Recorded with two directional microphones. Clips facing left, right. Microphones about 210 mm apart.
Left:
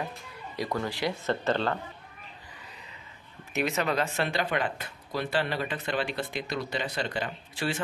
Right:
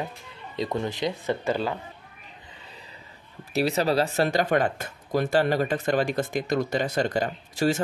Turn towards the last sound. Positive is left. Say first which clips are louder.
# right 8 dB
turn(degrees=-45)  # may be behind; listen again after turning